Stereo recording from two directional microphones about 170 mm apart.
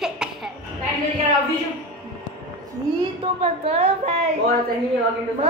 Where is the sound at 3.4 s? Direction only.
40° right (ahead or behind).